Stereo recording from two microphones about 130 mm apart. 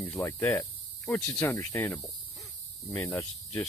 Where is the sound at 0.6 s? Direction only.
10° left (ahead or behind).